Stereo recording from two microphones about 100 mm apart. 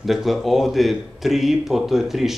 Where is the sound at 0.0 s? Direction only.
Centre (ahead or behind).